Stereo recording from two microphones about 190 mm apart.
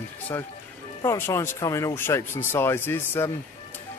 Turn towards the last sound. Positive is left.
turn(degrees=10)  # may be behind; listen again after turning